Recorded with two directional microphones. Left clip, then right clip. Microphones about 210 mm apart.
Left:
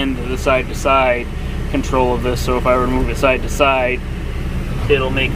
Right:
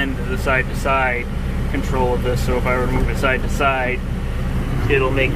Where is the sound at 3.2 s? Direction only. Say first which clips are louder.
Left 4 dB; 35° left (ahead or behind).